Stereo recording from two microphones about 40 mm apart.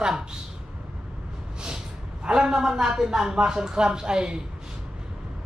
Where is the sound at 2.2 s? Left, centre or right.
Centre.